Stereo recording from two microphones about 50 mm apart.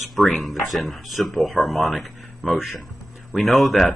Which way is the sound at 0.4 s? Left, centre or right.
Centre.